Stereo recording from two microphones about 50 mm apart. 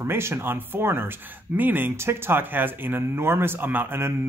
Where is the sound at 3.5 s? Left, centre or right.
Right.